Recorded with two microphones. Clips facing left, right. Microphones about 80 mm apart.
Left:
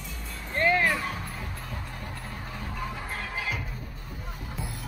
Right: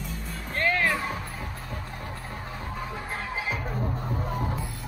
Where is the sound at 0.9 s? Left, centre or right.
Centre.